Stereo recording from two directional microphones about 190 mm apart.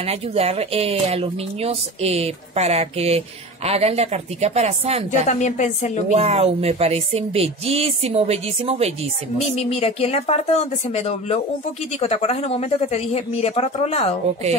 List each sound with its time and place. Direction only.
0.0 s a woman's voice: 30° right (ahead or behind)
5.3 s speech: 40° left (ahead or behind)
6.1 s a woman's voice: 30° right (ahead or behind)
9.6 s speech: 35° left (ahead or behind)